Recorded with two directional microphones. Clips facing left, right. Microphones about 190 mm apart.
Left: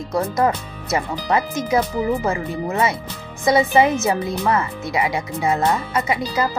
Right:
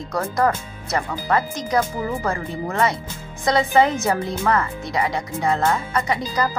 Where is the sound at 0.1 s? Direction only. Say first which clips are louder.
Left 2 dB; 20° left (ahead or behind).